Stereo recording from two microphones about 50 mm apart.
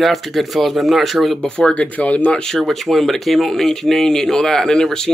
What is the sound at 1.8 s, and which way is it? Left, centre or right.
Speech, left.